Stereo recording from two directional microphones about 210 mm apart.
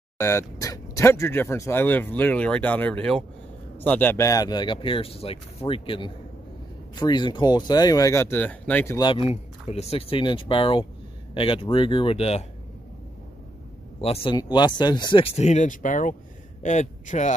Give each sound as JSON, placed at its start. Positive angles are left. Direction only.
{"t": 0.2, "sound": "speech", "side_deg": 15}
{"t": 14.0, "sound": "a man's voice", "side_deg": 25}